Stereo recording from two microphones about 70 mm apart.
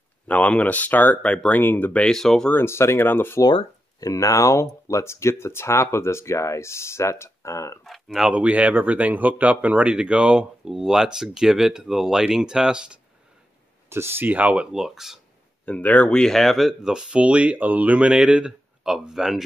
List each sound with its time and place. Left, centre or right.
0.3 s speech: left
1.6 s speech: left
1.9 s speech: centre
2.1 s speech: centre
2.5 s speech: left
4.0 s speech: left
7.8 s speech: centre
8.3 s speech: centre
13.8 s speech: right
14.2 s speech: right
14.7 s speech: centre
15.6 s speech: centre